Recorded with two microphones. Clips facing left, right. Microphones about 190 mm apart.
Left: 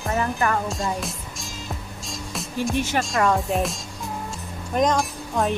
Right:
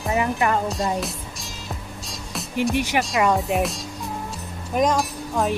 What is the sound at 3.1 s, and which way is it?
Speech, 5° right (ahead or behind).